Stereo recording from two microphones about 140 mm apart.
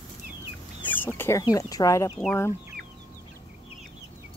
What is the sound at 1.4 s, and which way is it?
Speech, 25° left (ahead or behind).